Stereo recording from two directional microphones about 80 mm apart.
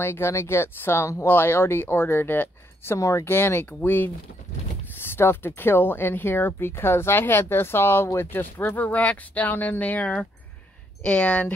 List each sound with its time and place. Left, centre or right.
0.0 s speech: left
3.0 s speech: left
3.3 s speech: left
5.1 s speech: left